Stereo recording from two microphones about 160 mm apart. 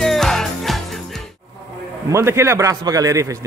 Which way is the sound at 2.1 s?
15° right (ahead or behind).